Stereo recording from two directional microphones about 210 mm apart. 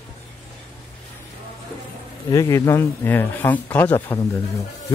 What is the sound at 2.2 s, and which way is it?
Speech, 15° left (ahead or behind).